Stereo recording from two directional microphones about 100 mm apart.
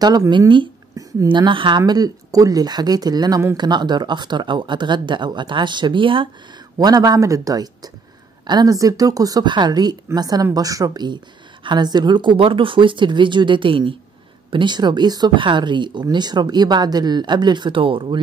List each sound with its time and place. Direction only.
1.3 s speech: 55° right (ahead or behind)
1.8 s speech: 40° right (ahead or behind); by 6.2 s 55° right (ahead or behind)
6.8 s speech: 40° right (ahead or behind); by 18.2 s 60° right (ahead or behind)